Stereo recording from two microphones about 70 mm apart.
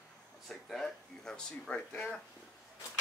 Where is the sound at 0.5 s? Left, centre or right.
Centre.